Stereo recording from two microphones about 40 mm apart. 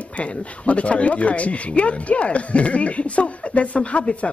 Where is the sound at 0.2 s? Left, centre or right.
Left.